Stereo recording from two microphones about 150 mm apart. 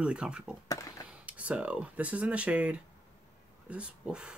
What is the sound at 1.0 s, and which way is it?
Speech, 10° right (ahead or behind).